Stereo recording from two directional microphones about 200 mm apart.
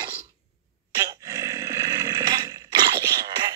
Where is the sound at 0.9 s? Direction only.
15° right (ahead or behind).